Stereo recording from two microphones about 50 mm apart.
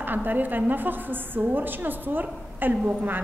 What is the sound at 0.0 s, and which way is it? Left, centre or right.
A woman's voice, right.